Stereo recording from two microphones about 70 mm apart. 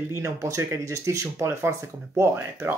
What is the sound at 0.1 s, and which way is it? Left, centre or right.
Speech, right.